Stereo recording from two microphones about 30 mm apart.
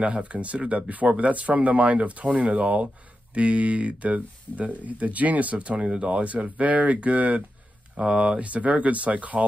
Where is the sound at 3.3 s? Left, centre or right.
Right.